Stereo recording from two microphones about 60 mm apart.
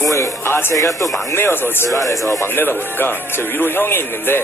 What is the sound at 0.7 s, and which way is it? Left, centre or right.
Speech, left.